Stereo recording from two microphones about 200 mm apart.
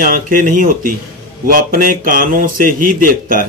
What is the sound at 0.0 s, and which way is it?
Speech, 45° right (ahead or behind).